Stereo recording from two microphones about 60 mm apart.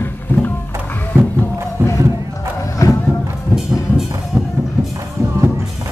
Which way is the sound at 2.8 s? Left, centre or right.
Left.